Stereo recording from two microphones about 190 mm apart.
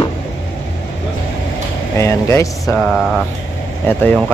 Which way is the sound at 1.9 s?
15° left (ahead or behind).